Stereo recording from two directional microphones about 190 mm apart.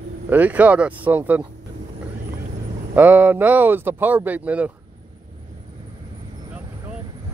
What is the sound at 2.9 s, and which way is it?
Speech, 10° right (ahead or behind).